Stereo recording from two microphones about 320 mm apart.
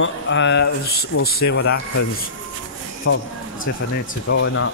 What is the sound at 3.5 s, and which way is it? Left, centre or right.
Speech, left.